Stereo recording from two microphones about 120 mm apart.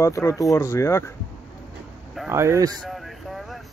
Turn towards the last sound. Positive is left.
turn(degrees=0)  # may be behind; listen again after turning